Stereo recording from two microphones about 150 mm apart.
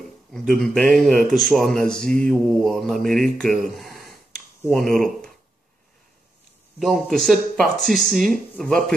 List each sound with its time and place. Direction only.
0.3 s a man's voice: 5° left (ahead or behind)
6.8 s a man's voice: centre (ahead or behind)